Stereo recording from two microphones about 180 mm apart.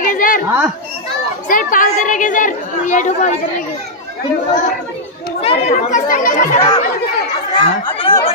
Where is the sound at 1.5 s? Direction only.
50° left (ahead or behind).